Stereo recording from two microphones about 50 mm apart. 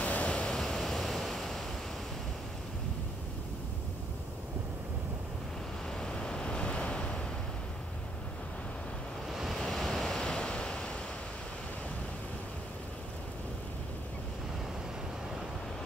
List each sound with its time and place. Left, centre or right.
0.0 s waves: left
0.3 s waves: centre
5.9 s waves: centre
9.3 s waves: centre
10.2 s waves: centre